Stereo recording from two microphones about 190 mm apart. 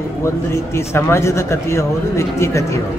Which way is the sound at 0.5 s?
15° left (ahead or behind).